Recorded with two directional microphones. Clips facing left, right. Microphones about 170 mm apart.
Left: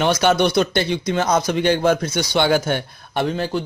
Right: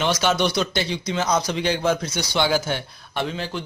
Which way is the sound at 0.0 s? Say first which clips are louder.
Left 4 dB; 55° left (ahead or behind).